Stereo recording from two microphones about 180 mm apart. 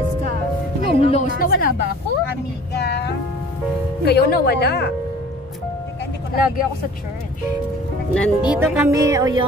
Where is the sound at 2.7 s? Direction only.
65° left (ahead or behind).